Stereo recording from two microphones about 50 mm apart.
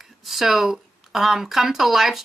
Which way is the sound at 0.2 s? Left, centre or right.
Centre.